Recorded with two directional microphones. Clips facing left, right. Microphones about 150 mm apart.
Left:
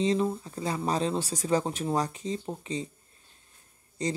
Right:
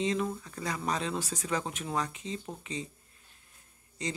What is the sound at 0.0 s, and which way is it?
Speech, 30° left (ahead or behind).